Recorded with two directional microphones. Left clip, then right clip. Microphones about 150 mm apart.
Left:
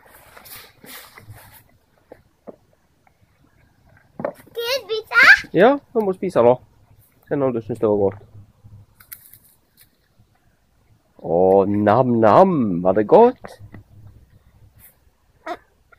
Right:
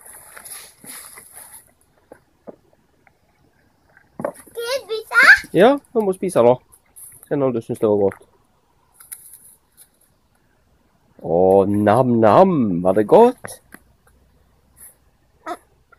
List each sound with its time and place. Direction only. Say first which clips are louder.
0.1 s boat: right 2 dB; centre (ahead or behind)
2.5 s boat: right 1 dB; 15° left (ahead or behind)
4.5 s a sound: left 2 dB; 10° left (ahead or behind)
5.5 s speech: right 1 dB; 15° right (ahead or behind)
11.2 s a sound: right 1 dB; 15° right (ahead or behind)
11.8 s speech: right 1 dB; 15° right (ahead or behind)